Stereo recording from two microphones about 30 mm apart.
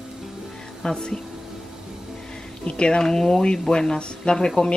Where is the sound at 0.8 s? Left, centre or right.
Left.